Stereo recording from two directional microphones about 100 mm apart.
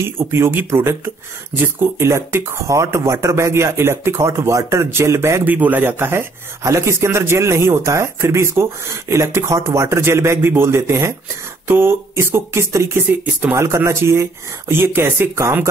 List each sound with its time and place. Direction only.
0.0 s speech: 25° right (ahead or behind)